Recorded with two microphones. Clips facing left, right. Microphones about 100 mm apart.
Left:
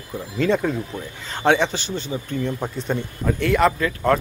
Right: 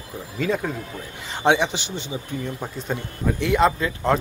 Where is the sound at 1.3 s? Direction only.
15° right (ahead or behind).